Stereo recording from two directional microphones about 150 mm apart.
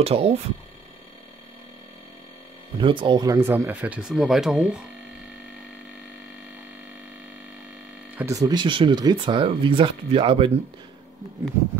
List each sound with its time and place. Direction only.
0.0 s speech: 40° right (ahead or behind)
2.8 s speech: 35° right (ahead or behind); by 4.7 s 5° right (ahead or behind)
8.2 s speech: 20° right (ahead or behind); by 10.5 s 35° right (ahead or behind)